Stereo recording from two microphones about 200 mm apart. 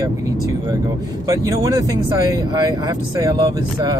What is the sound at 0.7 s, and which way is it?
Speech, 20° right (ahead or behind).